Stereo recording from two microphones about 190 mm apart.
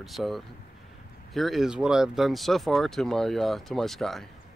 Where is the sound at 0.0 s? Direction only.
Centre (ahead or behind).